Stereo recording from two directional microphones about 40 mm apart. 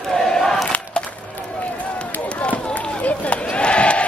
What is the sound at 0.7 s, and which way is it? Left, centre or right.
Battle cry, left.